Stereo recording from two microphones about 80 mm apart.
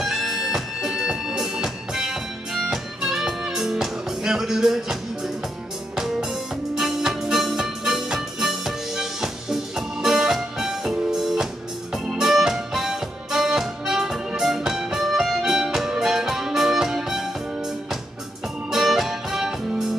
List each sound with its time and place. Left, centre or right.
0.0 s music: centre
5.9 s music: centre
18.7 s music: centre